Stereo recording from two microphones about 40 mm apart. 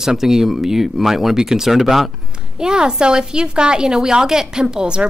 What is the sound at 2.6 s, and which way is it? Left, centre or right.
A woman's voice, centre.